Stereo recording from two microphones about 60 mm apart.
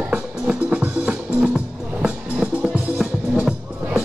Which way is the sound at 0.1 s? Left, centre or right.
Right.